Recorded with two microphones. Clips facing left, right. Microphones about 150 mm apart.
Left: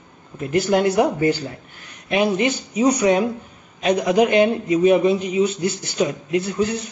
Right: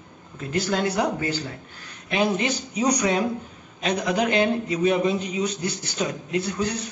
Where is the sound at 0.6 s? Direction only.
15° left (ahead or behind).